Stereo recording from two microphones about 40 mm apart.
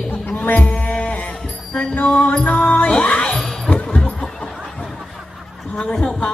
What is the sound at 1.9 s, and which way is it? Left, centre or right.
Music, left.